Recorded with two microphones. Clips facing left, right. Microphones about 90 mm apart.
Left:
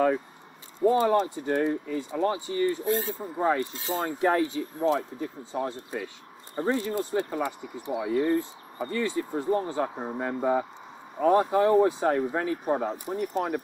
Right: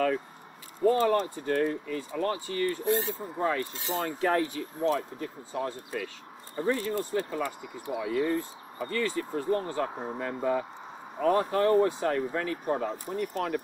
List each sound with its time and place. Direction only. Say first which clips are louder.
0.7 s speech: left 2 dB; 20° left (ahead or behind)
8.0 s speech: left 3 dB; 30° left (ahead or behind)